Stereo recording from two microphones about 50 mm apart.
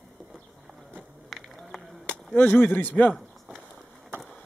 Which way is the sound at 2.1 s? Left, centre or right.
Left.